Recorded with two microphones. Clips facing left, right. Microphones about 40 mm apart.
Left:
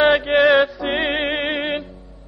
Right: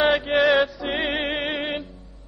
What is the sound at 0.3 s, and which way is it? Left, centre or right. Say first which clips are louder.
Music: left 4 dB; centre.